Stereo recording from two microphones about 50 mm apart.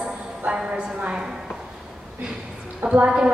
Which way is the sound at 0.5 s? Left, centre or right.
Right.